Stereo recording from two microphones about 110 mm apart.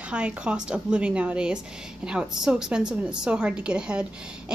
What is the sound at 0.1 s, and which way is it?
A woman's voice, 10° right (ahead or behind).